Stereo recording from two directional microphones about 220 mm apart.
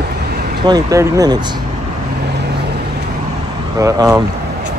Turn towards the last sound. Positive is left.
turn(degrees=-15)  # may be behind; listen again after turning